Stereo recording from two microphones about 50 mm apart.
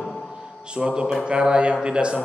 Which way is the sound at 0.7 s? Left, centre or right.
Centre.